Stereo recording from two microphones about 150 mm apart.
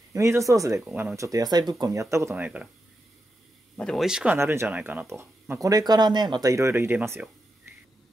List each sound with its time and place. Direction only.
0.1 s speech: 20° right (ahead or behind)
3.7 s speech: 5° left (ahead or behind)
4.4 s speech: 15° right (ahead or behind)